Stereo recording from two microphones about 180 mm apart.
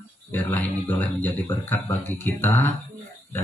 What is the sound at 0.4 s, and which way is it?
Speech, 10° left (ahead or behind).